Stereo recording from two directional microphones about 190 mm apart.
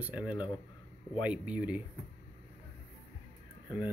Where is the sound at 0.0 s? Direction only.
5° right (ahead or behind).